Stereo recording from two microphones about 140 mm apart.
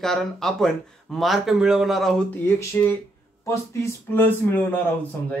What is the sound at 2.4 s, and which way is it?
Speech, 15° left (ahead or behind).